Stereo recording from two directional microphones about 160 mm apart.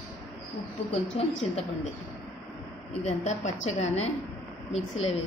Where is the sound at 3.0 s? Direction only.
45° left (ahead or behind).